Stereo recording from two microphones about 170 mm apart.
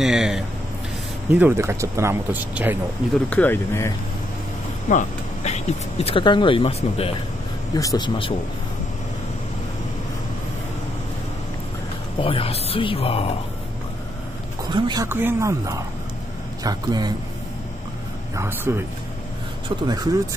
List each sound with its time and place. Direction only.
0.0 s speech: centre (ahead or behind)
1.3 s speech: 10° right (ahead or behind)
3.3 s speech: 10° left (ahead or behind)
4.8 s speech: 45° left (ahead or behind)
7.7 s speech: 20° left (ahead or behind)
12.2 s speech: 35° left (ahead or behind)
14.7 s speech: 25° right (ahead or behind)
15.0 s speech: 15° right (ahead or behind)
18.3 s speech: 15° right (ahead or behind)
19.9 s speech: 20° right (ahead or behind)